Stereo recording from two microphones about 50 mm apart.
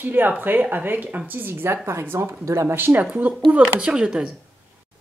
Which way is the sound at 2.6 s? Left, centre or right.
Right.